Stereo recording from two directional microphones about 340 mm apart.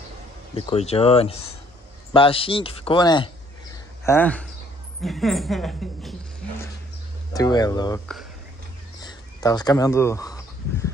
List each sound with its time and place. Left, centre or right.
0.6 s a man's voice: centre
7.3 s a man's voice: centre
9.0 s a sound: centre